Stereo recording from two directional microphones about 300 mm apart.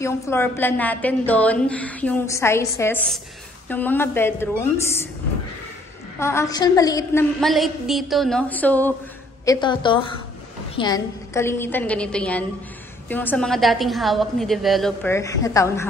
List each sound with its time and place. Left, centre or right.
0.0 s a woman's voice: centre
6.1 s a woman's voice: centre
7.3 s a woman's voice: centre